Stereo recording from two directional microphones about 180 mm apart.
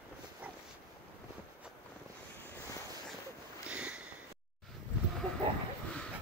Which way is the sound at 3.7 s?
5° right (ahead or behind).